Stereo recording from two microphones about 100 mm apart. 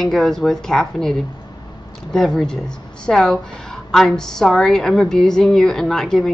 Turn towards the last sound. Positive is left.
turn(degrees=5)  # may be behind; listen again after turning